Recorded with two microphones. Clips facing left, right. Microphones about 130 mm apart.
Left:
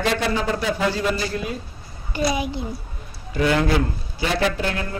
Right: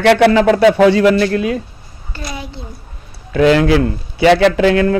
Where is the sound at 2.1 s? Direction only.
15° left (ahead or behind).